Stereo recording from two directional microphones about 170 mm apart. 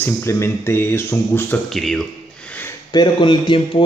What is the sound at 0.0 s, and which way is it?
Speech, 15° left (ahead or behind).